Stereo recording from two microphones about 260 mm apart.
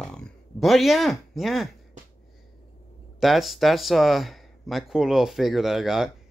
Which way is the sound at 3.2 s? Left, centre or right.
Centre.